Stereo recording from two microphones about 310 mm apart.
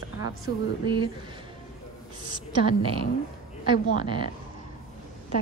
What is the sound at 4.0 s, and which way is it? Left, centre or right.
Speech, centre.